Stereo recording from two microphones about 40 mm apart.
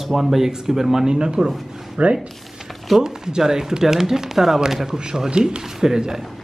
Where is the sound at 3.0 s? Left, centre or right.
Centre.